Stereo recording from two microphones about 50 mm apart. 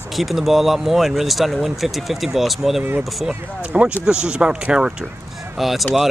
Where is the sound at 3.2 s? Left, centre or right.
Right.